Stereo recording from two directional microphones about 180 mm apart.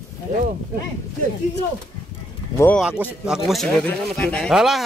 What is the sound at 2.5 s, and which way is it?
Speech, 10° left (ahead or behind).